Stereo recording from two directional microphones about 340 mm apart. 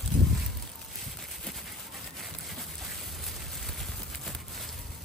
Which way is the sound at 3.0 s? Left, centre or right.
Centre.